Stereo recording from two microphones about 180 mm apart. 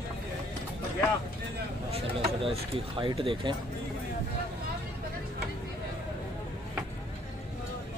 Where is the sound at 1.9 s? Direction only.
35° right (ahead or behind).